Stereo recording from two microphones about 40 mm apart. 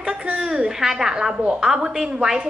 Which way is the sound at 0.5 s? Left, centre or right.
Centre.